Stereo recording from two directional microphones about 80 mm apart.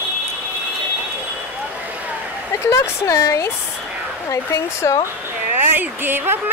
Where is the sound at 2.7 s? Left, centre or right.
Left.